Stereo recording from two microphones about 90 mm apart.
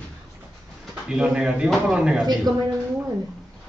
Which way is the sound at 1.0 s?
10° right (ahead or behind).